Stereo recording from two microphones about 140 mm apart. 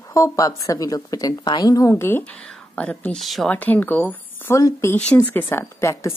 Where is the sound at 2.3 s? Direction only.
5° left (ahead or behind).